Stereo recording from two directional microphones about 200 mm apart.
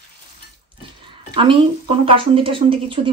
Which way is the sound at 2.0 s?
25° right (ahead or behind).